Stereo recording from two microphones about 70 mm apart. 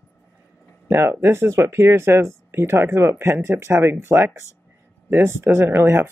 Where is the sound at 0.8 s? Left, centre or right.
Right.